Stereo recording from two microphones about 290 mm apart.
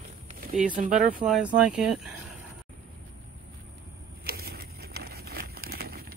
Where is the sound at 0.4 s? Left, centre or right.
Right.